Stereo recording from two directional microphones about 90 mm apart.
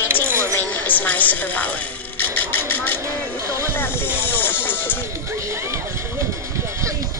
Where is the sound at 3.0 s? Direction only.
35° right (ahead or behind).